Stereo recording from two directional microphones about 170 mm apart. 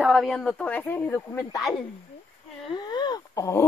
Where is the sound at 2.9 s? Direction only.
25° left (ahead or behind).